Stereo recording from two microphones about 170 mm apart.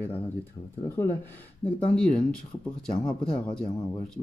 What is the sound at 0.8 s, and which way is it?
Speech, 10° left (ahead or behind).